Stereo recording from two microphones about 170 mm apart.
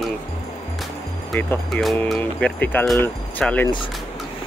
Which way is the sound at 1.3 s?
5° left (ahead or behind).